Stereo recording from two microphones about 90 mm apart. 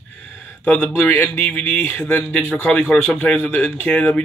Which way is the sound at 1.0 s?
20° left (ahead or behind).